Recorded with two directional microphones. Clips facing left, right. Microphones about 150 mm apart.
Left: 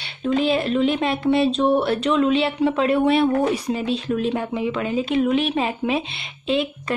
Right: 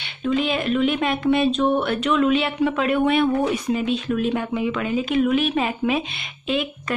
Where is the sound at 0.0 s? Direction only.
35° left (ahead or behind).